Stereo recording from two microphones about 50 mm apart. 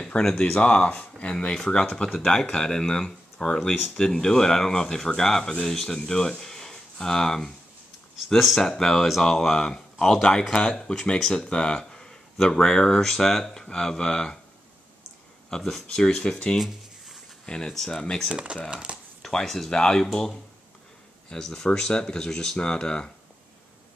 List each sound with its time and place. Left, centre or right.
0.0 s speech: centre
8.2 s speech: centre
15.5 s speech: centre
16.5 s writing: centre
17.5 s speech: centre
18.3 s speech: right
19.2 s speech: centre